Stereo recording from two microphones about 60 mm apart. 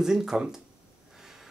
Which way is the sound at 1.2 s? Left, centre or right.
Centre.